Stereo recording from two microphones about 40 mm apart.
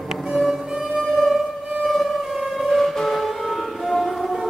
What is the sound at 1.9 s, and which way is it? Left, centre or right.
Siren, centre.